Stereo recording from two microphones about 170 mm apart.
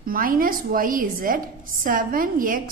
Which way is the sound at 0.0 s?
55° right (ahead or behind).